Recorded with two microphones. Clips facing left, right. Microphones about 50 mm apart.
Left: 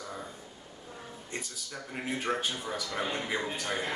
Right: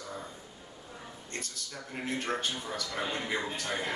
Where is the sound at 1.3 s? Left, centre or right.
Centre.